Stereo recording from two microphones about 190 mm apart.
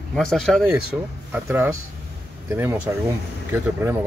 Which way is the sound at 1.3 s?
10° right (ahead or behind).